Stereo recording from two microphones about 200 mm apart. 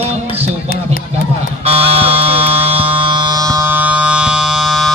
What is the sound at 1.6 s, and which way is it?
Buzzer, 30° right (ahead or behind).